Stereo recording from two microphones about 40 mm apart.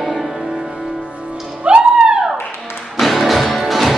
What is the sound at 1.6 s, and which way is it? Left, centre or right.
Music, right.